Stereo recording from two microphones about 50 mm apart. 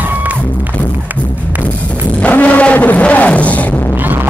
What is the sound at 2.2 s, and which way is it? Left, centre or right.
Music, left.